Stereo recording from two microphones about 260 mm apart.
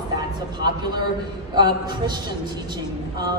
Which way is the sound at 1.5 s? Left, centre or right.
Centre.